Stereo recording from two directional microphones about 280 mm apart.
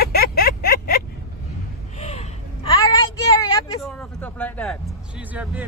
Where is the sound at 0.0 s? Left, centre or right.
Left.